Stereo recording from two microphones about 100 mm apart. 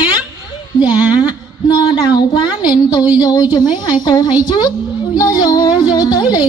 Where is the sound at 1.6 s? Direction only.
45° left (ahead or behind).